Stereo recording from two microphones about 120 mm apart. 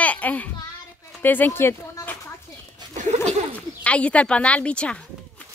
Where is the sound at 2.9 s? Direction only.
75° right (ahead or behind).